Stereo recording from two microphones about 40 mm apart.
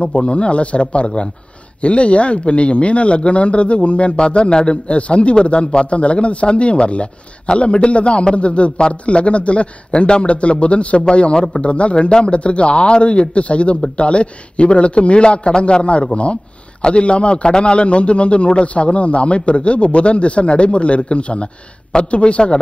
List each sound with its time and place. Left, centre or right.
0.0 s a man's voice: left